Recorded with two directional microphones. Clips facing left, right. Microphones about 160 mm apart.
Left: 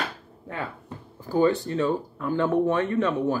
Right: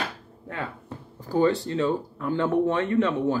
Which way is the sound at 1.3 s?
35° right (ahead or behind).